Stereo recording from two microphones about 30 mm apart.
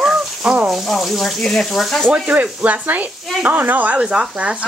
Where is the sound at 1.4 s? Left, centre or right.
Left.